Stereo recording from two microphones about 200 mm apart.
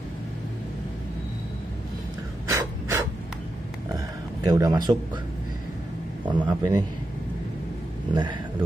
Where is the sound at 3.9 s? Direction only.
20° right (ahead or behind).